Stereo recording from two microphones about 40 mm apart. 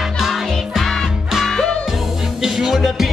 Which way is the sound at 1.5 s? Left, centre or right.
Centre.